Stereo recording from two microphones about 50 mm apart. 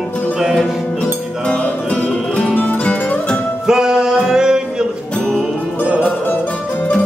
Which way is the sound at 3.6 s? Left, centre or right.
Centre.